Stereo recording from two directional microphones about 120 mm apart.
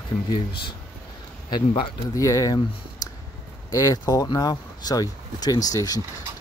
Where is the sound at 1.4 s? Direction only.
40° left (ahead or behind).